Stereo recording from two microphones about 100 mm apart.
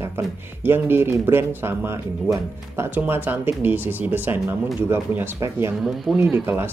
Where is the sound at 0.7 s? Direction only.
20° right (ahead or behind).